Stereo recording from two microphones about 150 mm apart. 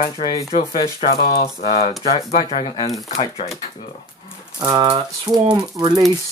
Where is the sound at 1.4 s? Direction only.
45° left (ahead or behind).